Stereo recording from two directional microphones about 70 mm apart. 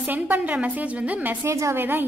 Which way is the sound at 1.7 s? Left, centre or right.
Right.